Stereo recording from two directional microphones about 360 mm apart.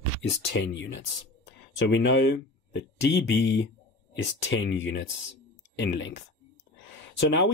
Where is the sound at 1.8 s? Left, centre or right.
Left.